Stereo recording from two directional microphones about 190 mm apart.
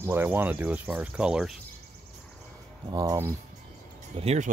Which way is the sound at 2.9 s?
15° right (ahead or behind).